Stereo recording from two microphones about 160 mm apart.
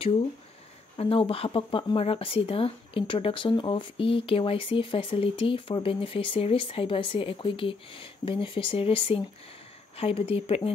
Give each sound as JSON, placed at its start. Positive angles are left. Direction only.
{"t": 0.9, "sound": "speech", "side_deg": 35}